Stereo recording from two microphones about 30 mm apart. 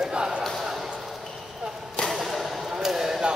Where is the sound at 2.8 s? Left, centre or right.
Centre.